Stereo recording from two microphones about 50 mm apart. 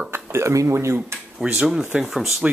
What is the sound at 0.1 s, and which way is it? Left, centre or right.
Speech, right.